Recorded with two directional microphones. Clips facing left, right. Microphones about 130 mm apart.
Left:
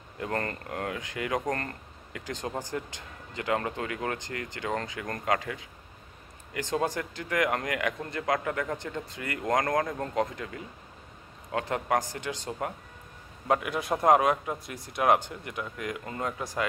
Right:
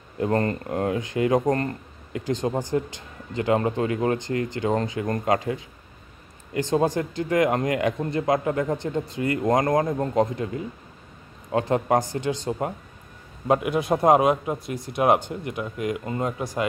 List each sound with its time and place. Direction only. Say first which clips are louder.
0.2 s speech: right 9 dB; 25° right (ahead or behind)